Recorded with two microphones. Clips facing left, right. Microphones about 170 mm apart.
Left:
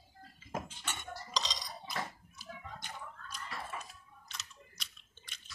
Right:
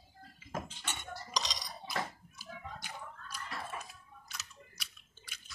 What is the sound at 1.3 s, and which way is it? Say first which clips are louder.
Cutlery: even; 15° right (ahead or behind).